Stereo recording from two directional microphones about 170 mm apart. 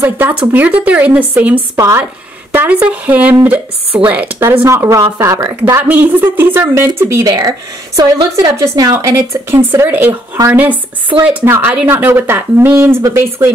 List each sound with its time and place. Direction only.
0.0 s a woman's voice: 10° right (ahead or behind)